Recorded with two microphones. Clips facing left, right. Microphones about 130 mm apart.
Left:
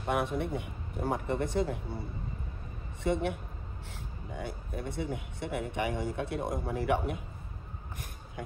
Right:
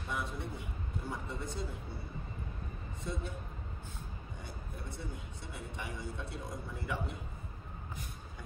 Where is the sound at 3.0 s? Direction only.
75° left (ahead or behind).